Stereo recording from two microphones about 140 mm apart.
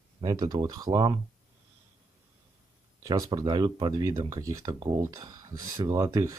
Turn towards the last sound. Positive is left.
turn(degrees=-25)  # may be behind; listen again after turning